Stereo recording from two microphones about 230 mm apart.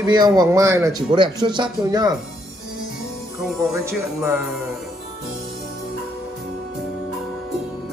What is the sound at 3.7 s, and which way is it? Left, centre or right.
Speech, centre.